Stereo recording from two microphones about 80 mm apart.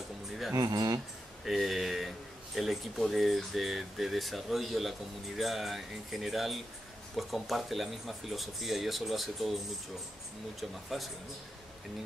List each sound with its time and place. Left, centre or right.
0.6 s speech: right
1.4 s speech: centre
10.6 s speech: centre